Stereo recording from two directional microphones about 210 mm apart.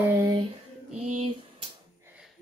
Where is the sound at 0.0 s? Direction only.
10° right (ahead or behind).